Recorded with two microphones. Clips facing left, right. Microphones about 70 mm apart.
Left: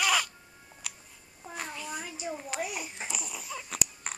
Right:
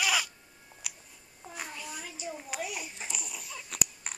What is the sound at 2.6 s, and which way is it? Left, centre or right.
Babbling, left.